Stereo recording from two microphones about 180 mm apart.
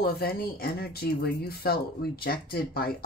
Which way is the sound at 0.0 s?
55° left (ahead or behind).